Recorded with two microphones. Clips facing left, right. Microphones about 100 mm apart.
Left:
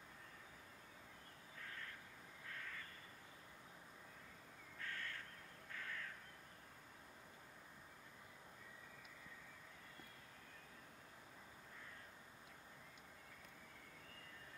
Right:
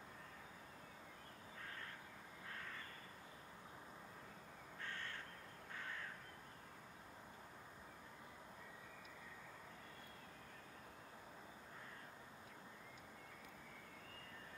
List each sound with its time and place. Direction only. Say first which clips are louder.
4.7 s crow: even; 30° right (ahead or behind)